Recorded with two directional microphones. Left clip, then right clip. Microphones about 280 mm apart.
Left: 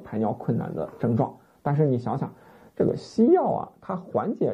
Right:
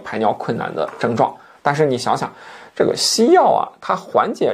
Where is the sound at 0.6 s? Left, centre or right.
Centre.